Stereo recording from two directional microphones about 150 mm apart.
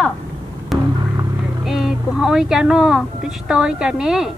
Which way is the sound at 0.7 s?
Centre (ahead or behind).